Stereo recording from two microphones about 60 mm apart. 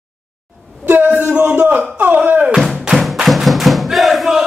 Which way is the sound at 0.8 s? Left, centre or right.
Right.